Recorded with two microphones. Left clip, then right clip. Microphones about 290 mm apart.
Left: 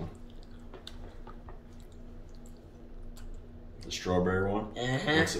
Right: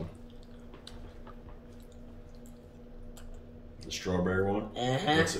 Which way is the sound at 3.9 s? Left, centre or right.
Centre.